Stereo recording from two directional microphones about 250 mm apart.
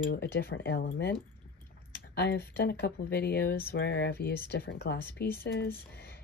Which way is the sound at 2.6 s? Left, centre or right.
Left.